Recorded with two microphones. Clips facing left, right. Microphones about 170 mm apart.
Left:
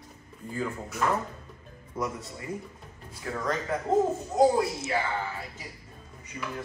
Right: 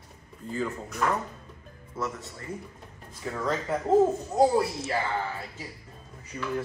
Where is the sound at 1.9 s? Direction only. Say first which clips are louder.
Left 1 dB; 15° left (ahead or behind).